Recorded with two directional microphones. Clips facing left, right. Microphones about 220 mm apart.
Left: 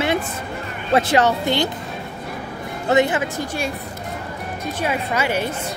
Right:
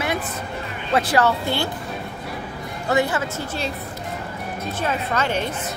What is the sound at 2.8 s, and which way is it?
Speech, 20° left (ahead or behind).